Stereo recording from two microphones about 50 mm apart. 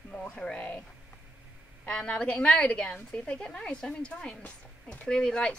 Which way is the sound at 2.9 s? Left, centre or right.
Left.